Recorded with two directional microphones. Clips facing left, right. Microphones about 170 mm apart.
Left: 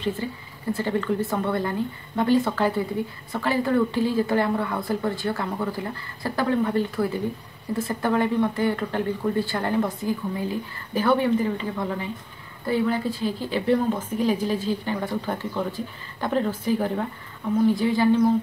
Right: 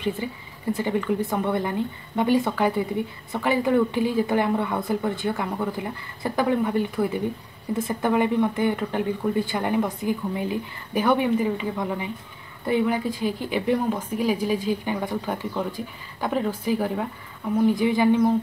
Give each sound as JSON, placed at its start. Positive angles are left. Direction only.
{"t": 0.2, "sound": "speech", "side_deg": -15}